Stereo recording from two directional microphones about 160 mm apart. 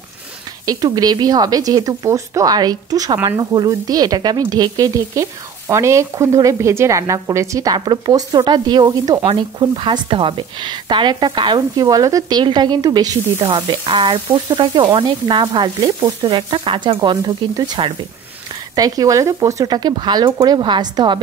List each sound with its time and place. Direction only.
0.7 s speech: 25° right (ahead or behind)